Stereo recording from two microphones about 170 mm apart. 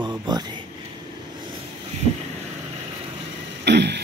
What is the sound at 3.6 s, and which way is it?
Throat clearing, 85° right.